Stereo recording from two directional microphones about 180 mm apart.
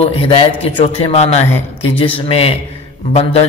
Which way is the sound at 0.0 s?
35° left (ahead or behind).